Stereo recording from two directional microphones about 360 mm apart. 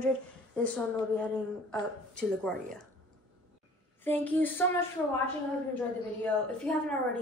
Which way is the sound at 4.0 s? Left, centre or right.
Centre.